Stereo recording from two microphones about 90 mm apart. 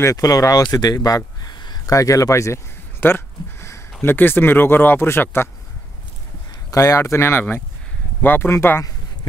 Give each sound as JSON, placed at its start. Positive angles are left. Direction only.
{"t": 0.0, "sound": "speech", "side_deg": 40}
{"t": 2.0, "sound": "speech", "side_deg": 40}
{"t": 6.7, "sound": "speech", "side_deg": 35}